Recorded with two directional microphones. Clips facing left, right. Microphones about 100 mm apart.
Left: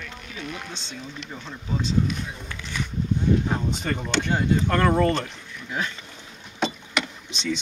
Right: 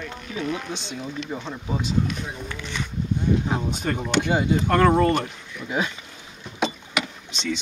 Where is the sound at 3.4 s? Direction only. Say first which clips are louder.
Right 1 dB; 10° right (ahead or behind).